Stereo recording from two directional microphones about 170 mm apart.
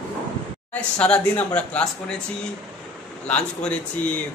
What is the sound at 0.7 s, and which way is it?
Speech, 5° left (ahead or behind).